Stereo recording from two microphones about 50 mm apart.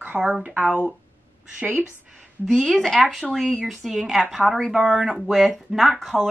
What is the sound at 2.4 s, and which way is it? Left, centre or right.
Speech, centre.